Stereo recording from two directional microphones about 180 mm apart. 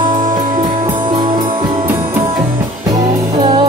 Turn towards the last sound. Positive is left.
turn(degrees=-25)  # may be behind; listen again after turning